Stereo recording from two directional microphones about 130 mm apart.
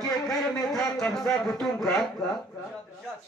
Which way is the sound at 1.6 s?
Centre (ahead or behind).